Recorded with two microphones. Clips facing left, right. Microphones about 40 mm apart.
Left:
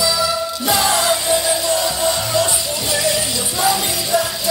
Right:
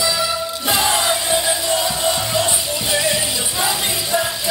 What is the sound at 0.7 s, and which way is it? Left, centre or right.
Music, centre.